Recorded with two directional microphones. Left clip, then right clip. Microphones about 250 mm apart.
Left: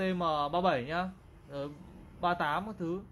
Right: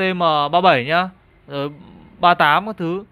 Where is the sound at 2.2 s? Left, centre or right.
Right.